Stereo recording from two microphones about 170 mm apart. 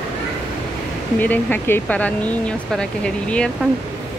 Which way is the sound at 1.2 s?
10° left (ahead or behind).